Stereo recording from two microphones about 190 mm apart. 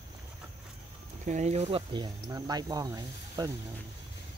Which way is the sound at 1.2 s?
40° right (ahead or behind).